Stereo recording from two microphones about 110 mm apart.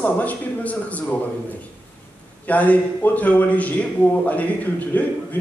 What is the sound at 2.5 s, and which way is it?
A man's voice, 15° left (ahead or behind).